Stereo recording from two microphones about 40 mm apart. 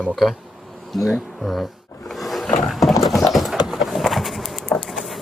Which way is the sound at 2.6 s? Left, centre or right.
Centre.